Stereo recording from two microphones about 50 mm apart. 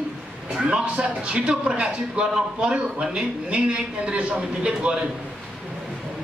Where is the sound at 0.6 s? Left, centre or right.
Right.